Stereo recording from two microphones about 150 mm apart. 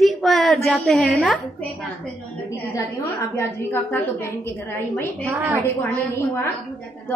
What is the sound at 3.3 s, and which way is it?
A woman's voice, 15° left (ahead or behind).